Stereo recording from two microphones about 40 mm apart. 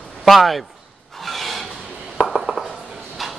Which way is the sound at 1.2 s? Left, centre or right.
Centre.